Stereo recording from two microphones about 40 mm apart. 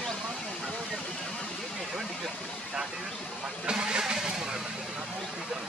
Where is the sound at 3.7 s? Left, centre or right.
Right.